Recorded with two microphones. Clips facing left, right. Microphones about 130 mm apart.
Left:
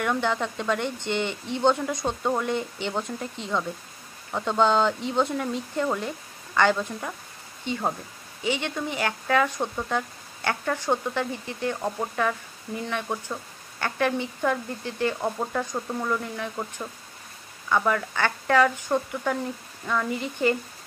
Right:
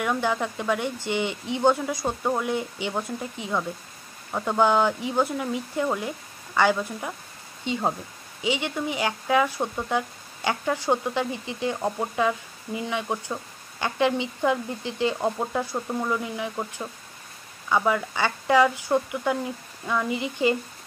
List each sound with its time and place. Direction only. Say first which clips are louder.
0.0 s speech: even; 10° right (ahead or behind)